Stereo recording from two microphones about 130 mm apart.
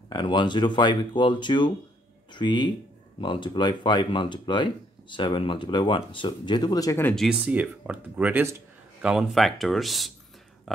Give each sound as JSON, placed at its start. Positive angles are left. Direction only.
{"t": 0.1, "sound": "speech", "side_deg": 35}
{"t": 7.2, "sound": "speech", "side_deg": -5}
{"t": 9.0, "sound": "speech", "side_deg": 0}